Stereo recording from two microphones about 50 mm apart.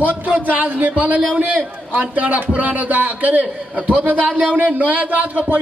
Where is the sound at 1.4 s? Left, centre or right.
Right.